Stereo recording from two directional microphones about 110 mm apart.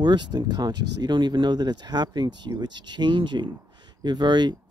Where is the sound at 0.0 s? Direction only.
40° right (ahead or behind).